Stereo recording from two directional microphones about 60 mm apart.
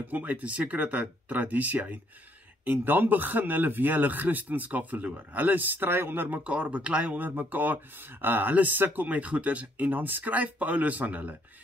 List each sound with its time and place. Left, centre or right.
0.0 s speech: right
6.4 s speech: right